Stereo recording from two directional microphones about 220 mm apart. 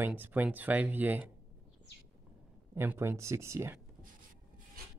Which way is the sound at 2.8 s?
10° right (ahead or behind).